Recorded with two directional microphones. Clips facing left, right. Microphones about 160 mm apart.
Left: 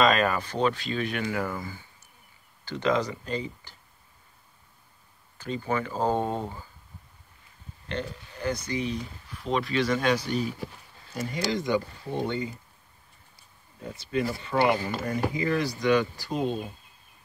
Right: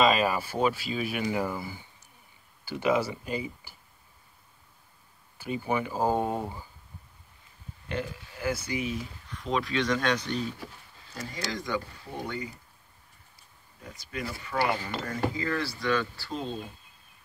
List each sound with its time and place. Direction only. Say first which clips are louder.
0.0 s speech: left 1 dB; 5° right (ahead or behind)
5.4 s speech: even; 10° right (ahead or behind)
7.9 s speech: even; 5° right (ahead or behind)
11.1 s speech: left 6 dB; 20° left (ahead or behind)
13.8 s speech: left 8 dB; 30° left (ahead or behind)